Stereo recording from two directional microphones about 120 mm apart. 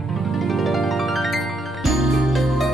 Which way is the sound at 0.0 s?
Centre (ahead or behind).